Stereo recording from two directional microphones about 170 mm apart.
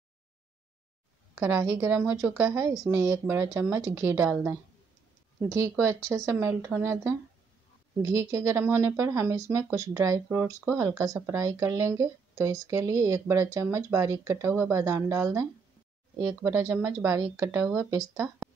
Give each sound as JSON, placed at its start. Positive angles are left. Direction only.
{"t": 1.4, "sound": "a woman's voice", "side_deg": -20}
{"t": 18.1, "sound": "speech", "side_deg": 0}